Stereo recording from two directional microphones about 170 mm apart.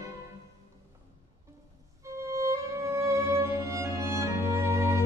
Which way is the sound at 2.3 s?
15° right (ahead or behind).